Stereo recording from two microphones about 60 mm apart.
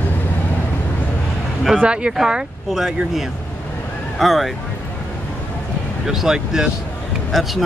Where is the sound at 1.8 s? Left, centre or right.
Centre.